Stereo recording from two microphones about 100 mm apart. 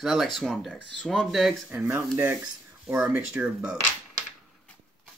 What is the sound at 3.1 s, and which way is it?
Speech, 10° right (ahead or behind).